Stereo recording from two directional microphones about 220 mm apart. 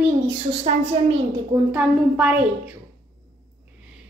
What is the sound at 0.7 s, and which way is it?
Speech, 30° right (ahead or behind).